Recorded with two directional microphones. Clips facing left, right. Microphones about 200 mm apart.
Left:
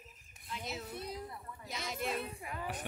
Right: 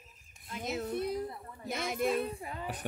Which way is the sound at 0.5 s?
50° right (ahead or behind).